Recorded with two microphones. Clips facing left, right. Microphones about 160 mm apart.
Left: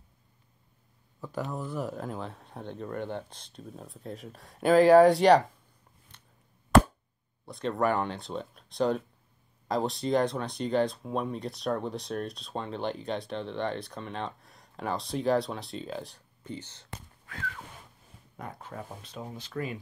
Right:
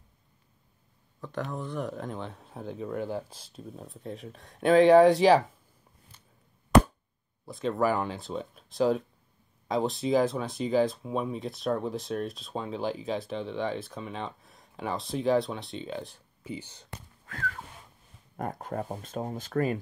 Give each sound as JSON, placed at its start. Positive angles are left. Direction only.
{"t": 1.2, "sound": "speech", "side_deg": 10}
{"t": 7.4, "sound": "speech", "side_deg": 0}
{"t": 18.3, "sound": "speech", "side_deg": -45}